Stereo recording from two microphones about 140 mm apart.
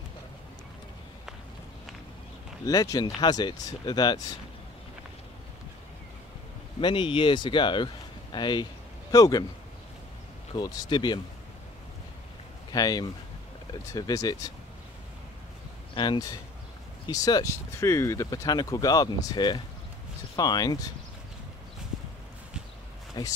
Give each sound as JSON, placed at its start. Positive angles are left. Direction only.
{"t": 2.6, "sound": "speech", "side_deg": 25}
{"t": 6.8, "sound": "speech", "side_deg": 35}
{"t": 10.5, "sound": "speech", "side_deg": 30}
{"t": 12.7, "sound": "speech", "side_deg": 25}
{"t": 15.9, "sound": "speech", "side_deg": 35}
{"t": 23.2, "sound": "speech", "side_deg": 30}